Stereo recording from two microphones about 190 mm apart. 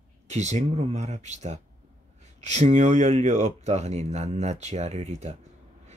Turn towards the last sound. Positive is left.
turn(degrees=-35)  # may be behind; listen again after turning